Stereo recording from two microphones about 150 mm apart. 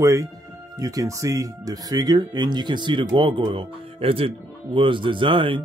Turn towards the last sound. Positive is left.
turn(degrees=-35)  # may be behind; listen again after turning